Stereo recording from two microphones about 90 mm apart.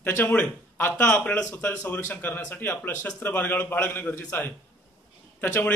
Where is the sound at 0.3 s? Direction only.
20° left (ahead or behind).